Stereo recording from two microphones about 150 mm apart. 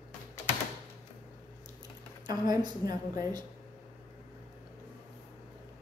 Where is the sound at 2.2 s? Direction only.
25° right (ahead or behind).